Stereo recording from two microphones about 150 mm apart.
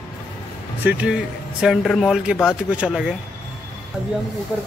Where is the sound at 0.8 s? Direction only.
5° right (ahead or behind).